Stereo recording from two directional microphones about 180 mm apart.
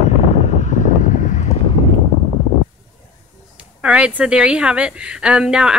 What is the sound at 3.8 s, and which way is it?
A woman's voice, 5° right (ahead or behind).